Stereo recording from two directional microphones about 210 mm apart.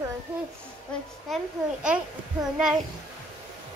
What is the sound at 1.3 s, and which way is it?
Speech, 5° right (ahead or behind).